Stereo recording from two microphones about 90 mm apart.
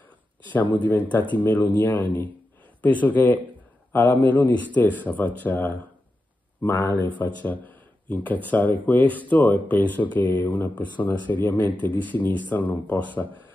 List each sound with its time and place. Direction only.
0.8 s a man's voice: 20° left (ahead or behind)
7.1 s speech: 20° left (ahead or behind)